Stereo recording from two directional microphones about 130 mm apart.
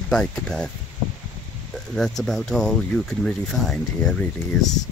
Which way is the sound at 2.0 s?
Centre (ahead or behind).